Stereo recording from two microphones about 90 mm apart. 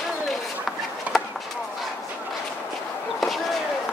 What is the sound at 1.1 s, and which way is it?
Chop, 15° right (ahead or behind).